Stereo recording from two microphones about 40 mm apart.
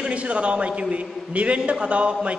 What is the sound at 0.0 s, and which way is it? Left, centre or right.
A man's voice, right.